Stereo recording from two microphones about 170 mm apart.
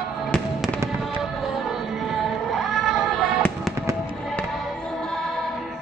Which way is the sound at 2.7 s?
Centre (ahead or behind).